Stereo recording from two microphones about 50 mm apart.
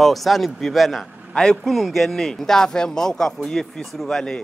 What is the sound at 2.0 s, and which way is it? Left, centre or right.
Speech, centre.